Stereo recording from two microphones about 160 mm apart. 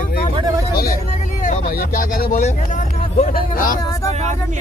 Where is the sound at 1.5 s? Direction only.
55° left (ahead or behind).